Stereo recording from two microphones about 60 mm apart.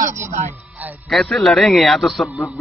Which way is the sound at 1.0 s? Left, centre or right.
Centre.